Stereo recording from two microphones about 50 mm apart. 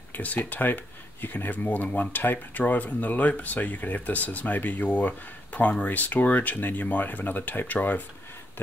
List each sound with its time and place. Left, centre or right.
0.1 s speech: left